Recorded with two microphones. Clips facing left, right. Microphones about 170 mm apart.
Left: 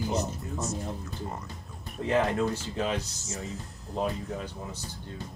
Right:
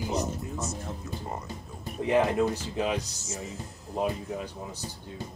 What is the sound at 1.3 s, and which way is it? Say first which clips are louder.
Music: right 3 dB; centre (ahead or behind).